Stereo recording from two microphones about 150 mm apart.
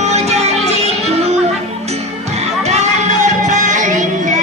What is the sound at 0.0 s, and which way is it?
Music, 45° right (ahead or behind).